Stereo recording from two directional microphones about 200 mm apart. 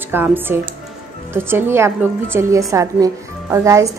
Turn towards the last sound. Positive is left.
turn(degrees=-15)  # may be behind; listen again after turning